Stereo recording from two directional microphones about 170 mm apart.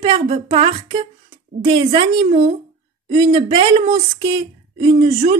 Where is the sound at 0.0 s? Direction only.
30° right (ahead or behind).